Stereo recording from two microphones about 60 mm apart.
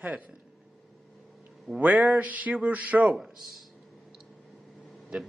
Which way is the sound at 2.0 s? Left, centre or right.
Right.